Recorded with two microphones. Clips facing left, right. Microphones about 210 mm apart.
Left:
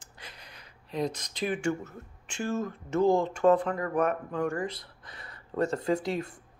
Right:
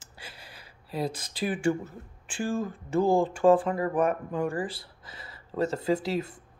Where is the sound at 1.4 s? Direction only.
35° right (ahead or behind).